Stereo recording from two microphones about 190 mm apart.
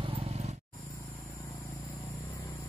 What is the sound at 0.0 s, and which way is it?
Vehicle, 30° right (ahead or behind).